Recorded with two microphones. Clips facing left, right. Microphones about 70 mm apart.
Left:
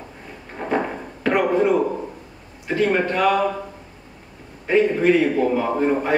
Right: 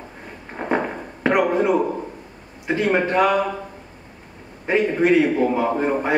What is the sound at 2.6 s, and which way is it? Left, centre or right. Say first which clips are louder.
Speech: even; centre.